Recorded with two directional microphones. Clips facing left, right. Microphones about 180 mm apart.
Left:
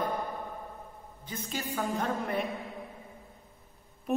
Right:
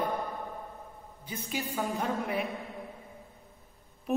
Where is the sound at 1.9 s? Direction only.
Centre (ahead or behind).